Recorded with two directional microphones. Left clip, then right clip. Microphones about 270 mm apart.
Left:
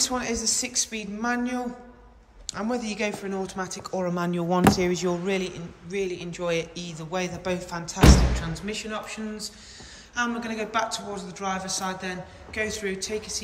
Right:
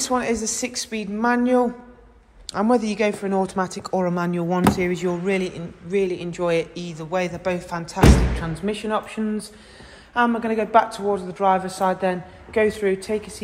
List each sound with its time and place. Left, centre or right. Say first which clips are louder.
0.0 s speech: right 4 dB; centre